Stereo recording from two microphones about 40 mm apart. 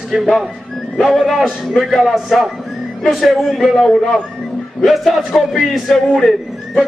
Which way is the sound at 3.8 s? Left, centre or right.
Centre.